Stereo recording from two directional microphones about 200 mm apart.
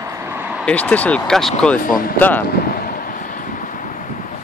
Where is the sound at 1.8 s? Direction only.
45° left (ahead or behind).